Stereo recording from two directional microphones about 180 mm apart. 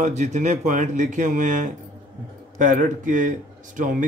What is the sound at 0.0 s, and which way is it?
Speech, 40° right (ahead or behind).